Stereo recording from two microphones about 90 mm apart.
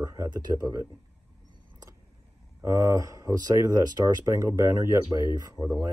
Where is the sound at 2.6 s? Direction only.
40° right (ahead or behind).